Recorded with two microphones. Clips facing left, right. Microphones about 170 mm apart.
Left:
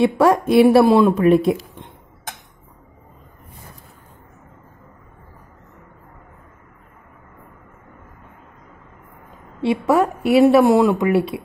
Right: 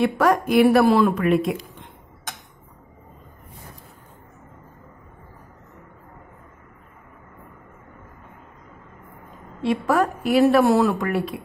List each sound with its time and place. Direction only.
0.0 s speech: 25° left (ahead or behind)
9.6 s speech: 25° left (ahead or behind)